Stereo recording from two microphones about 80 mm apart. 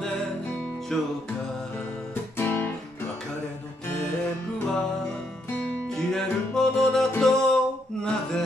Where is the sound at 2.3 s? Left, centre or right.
Left.